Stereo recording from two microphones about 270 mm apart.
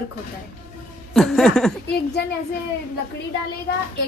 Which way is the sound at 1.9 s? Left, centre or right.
Left.